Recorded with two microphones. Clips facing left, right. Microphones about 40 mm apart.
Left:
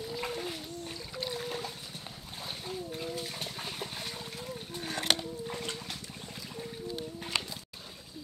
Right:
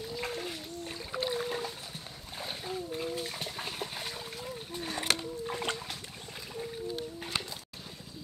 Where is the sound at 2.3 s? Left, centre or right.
Centre.